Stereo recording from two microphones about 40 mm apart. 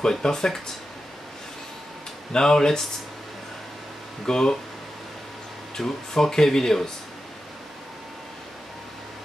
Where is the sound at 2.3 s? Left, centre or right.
Centre.